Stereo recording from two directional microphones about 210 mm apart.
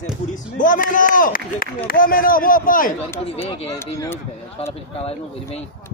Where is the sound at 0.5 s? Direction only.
40° left (ahead or behind).